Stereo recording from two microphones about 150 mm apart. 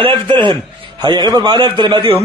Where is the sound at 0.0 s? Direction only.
35° right (ahead or behind).